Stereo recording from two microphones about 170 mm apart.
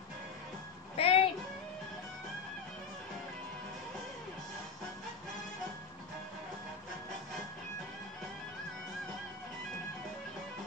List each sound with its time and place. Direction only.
0.9 s music: 35° left (ahead or behind)